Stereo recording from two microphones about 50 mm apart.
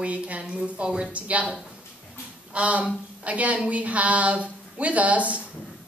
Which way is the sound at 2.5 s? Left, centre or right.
Right.